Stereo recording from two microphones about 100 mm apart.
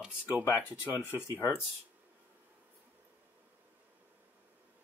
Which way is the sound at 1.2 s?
20° left (ahead or behind).